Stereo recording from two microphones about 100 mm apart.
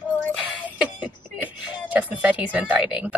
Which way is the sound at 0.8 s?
15° right (ahead or behind).